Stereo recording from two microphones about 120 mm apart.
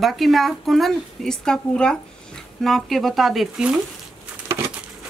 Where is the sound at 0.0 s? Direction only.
Centre (ahead or behind).